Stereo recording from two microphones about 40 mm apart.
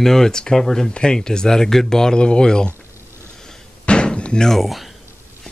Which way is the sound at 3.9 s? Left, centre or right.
Left.